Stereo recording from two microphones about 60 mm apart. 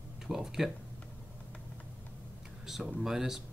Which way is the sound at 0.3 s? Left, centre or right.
Centre.